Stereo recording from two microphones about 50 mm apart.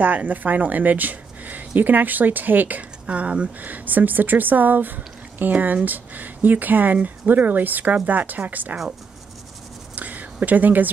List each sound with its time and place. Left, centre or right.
0.0 s speech: right
3.1 s speech: right
9.9 s a sound: right